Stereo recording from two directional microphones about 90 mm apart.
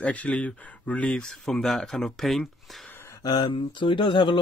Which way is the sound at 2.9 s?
30° left (ahead or behind).